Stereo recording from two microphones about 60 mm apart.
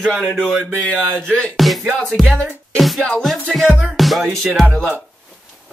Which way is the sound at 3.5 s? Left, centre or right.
Centre.